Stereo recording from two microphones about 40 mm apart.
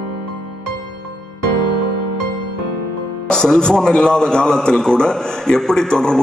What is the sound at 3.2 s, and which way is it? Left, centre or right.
A man's voice, centre.